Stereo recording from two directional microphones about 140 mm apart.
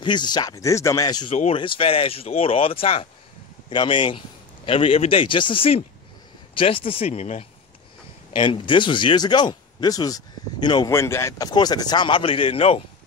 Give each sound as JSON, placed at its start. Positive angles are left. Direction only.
{"t": 0.0, "sound": "speech", "side_deg": 30}
{"t": 1.3, "sound": "speech", "side_deg": 50}
{"t": 1.6, "sound": "speech", "side_deg": 40}
{"t": 7.1, "sound": "speech", "side_deg": 50}
{"t": 8.4, "sound": "speech", "side_deg": 35}
{"t": 10.9, "sound": "speech", "side_deg": 20}